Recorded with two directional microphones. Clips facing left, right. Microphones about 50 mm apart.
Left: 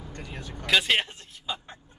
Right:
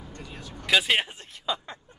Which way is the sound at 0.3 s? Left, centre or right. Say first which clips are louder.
Left 2 dB; left.